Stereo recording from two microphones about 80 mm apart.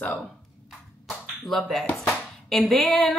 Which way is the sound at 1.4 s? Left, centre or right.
Centre.